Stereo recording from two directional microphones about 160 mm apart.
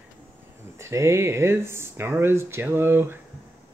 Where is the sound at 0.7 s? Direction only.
20° right (ahead or behind).